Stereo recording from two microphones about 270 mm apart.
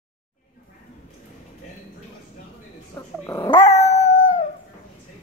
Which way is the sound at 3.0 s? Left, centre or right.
Centre.